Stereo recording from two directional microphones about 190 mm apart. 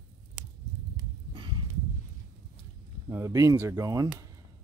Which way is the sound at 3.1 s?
15° right (ahead or behind).